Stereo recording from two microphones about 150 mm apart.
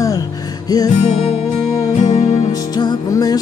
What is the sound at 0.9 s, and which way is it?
Music, 45° left (ahead or behind).